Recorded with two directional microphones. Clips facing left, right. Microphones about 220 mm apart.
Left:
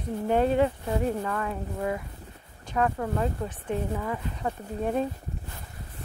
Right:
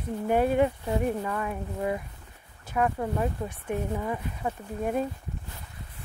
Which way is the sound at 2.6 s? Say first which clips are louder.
Even; 10° right (ahead or behind).